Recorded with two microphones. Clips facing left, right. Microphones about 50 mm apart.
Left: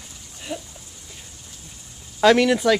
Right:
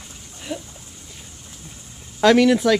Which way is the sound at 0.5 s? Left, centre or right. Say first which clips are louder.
Right 1 dB; centre.